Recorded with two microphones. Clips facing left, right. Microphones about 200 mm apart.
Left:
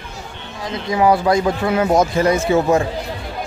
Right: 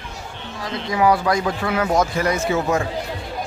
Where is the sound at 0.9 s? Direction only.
25° left (ahead or behind).